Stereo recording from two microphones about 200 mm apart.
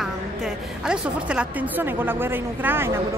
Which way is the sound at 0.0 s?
5° right (ahead or behind).